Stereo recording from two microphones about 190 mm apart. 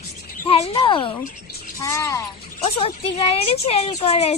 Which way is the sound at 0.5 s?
25° left (ahead or behind).